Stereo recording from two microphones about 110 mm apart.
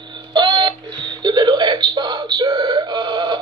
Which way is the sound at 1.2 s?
40° right (ahead or behind).